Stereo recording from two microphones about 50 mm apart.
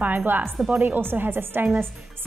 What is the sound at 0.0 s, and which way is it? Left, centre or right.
A woman's voice, right.